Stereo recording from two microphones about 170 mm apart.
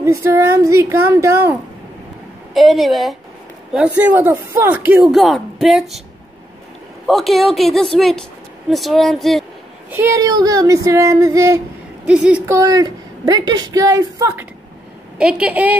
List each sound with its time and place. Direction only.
0.0 s speech: 15° right (ahead or behind)
2.5 s a woman's voice: centre (ahead or behind)
5.1 s a woman's voice: centre (ahead or behind)
7.1 s a woman's voice: centre (ahead or behind)
9.8 s a woman's voice: 15° right (ahead or behind)
12.1 s speech: 5° right (ahead or behind)
12.5 s a woman's voice: 20° right (ahead or behind)